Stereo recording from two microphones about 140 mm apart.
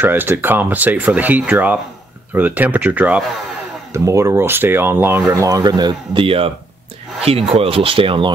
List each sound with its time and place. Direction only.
0.0 s speech: 15° right (ahead or behind)
3.9 s speech: 20° right (ahead or behind); by 8.3 s 40° right (ahead or behind)